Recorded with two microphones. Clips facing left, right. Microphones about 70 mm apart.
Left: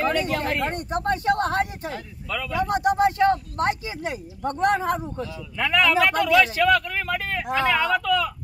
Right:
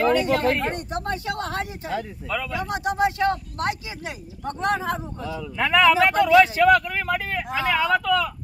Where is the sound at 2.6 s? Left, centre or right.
Left.